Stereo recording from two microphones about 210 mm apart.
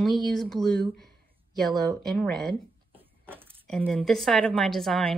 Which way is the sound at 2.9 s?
10° right (ahead or behind).